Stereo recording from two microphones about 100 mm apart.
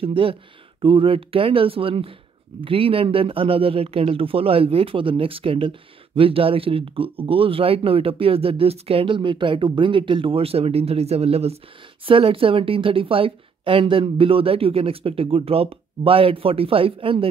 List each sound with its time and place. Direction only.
0.0 s speech: 65° right (ahead or behind)
9.0 s speech: 55° right (ahead or behind); by 11.5 s 90° right
12.1 s speech: 65° right (ahead or behind)